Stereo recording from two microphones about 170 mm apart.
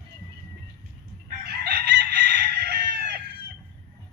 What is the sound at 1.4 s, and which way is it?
Chicken, 80° right.